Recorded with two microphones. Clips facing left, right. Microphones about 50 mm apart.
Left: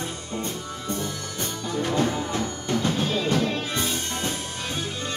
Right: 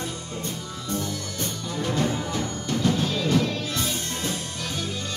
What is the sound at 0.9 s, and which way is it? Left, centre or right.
Music, centre.